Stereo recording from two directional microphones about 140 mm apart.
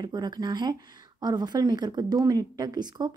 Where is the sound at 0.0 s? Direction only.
30° right (ahead or behind).